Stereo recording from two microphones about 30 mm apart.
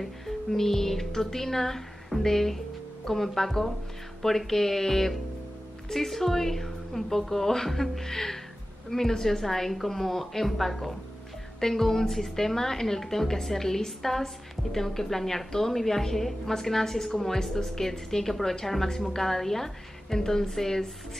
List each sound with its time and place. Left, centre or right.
0.0 s a woman's voice: centre
11.6 s a woman's voice: centre